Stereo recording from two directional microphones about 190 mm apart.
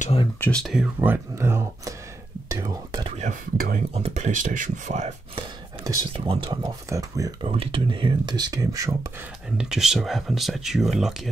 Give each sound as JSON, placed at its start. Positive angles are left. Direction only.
{"t": 0.0, "sound": "speech", "side_deg": 30}
{"t": 0.4, "sound": "speech", "side_deg": 5}
{"t": 1.0, "sound": "speech", "side_deg": -10}
{"t": 2.5, "sound": "whispering", "side_deg": -20}
{"t": 3.2, "sound": "speech", "side_deg": -45}
{"t": 3.9, "sound": "speech", "side_deg": -35}
{"t": 7.4, "sound": "speech", "side_deg": -30}
{"t": 9.6, "sound": "speech", "side_deg": 0}